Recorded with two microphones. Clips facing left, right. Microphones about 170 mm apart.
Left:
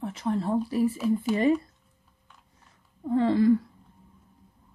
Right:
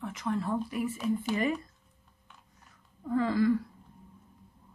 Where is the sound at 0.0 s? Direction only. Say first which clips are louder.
Left 4 dB; 30° left (ahead or behind).